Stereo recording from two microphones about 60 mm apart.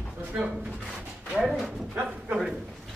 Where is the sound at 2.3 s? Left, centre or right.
Right.